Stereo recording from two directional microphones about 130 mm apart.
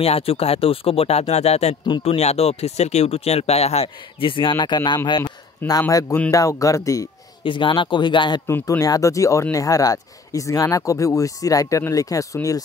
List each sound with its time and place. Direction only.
0.0 s speech: 50° left (ahead or behind)
5.2 s a man's voice: 25° left (ahead or behind)
7.4 s speech: 40° left (ahead or behind)
8.5 s speech: 25° left (ahead or behind)